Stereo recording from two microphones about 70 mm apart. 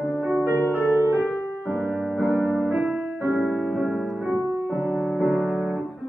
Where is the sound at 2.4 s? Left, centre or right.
Centre.